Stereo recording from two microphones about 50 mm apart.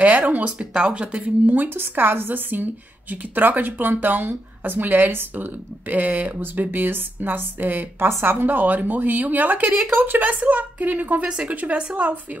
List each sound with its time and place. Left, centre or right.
0.0 s a woman's voice: right
0.7 s a woman's voice: right
11.2 s speech: right